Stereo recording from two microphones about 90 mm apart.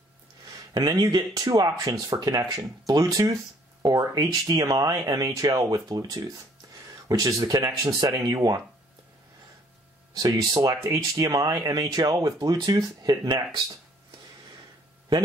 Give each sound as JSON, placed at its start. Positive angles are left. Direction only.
{"t": 0.9, "sound": "speech", "side_deg": -45}
{"t": 10.1, "sound": "speech", "side_deg": -45}